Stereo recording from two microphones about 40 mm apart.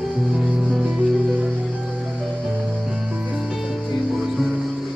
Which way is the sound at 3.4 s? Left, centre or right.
Centre.